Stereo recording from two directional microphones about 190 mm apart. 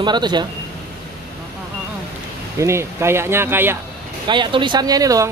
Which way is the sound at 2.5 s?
15° right (ahead or behind).